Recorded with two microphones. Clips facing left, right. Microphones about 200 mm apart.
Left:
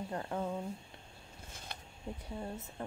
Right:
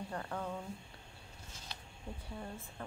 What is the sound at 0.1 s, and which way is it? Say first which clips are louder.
Speech: left 4 dB; 20° left (ahead or behind).